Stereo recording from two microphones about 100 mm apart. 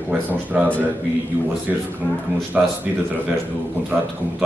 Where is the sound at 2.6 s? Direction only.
15° right (ahead or behind).